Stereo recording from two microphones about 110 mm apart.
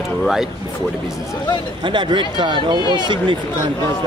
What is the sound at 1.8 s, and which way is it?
Speech, 45° right (ahead or behind).